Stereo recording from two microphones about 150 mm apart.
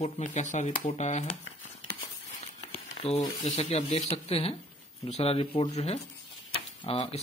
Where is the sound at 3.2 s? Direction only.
25° left (ahead or behind).